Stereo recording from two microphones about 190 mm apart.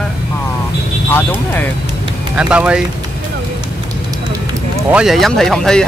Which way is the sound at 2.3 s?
5° right (ahead or behind).